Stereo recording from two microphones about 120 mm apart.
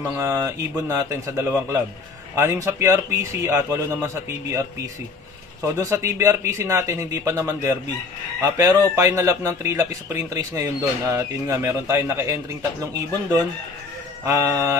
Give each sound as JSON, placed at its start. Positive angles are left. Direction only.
{"t": 0.2, "sound": "speech", "side_deg": -20}
{"t": 14.2, "sound": "speech", "side_deg": -25}